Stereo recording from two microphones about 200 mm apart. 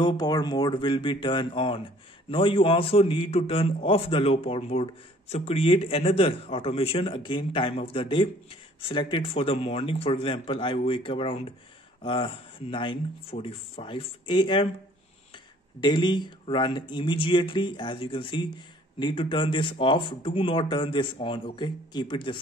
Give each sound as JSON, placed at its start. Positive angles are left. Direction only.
{"t": 0.0, "sound": "a man's voice", "side_deg": 20}
{"t": 15.8, "sound": "a man's voice", "side_deg": 20}